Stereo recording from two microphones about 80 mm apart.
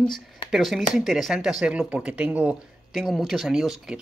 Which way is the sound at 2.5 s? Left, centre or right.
Centre.